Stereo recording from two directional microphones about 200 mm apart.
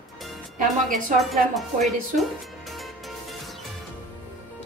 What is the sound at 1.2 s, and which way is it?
Music, centre (ahead or behind).